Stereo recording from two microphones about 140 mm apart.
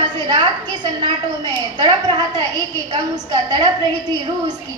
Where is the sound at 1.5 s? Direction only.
30° right (ahead or behind).